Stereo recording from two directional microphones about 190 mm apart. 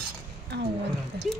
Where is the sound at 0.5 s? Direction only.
60° right (ahead or behind).